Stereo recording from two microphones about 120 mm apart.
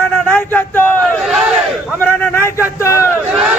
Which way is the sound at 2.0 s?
15° left (ahead or behind).